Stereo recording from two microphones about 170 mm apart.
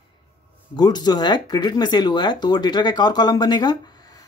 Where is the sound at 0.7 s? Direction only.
25° left (ahead or behind).